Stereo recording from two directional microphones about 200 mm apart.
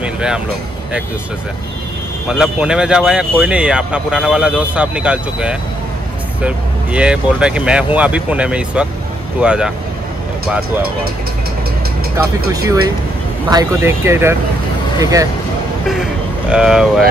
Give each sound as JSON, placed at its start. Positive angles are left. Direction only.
{"t": 0.0, "sound": "a sound", "side_deg": -5}
{"t": 2.2, "sound": "speech", "side_deg": -5}
{"t": 13.5, "sound": "speech", "side_deg": -15}
{"t": 15.9, "sound": "vehicle", "side_deg": -5}